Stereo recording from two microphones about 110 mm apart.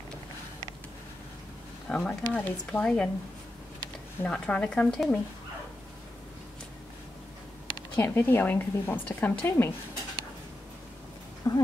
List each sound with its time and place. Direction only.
1.9 s a woman's voice: 10° left (ahead or behind)
7.9 s a woman's voice: 20° left (ahead or behind)
11.4 s speech: 30° left (ahead or behind)